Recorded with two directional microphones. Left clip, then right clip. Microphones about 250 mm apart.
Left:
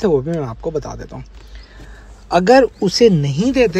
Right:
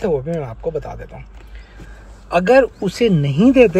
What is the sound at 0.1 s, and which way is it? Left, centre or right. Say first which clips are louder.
Speech: left 3 dB; left.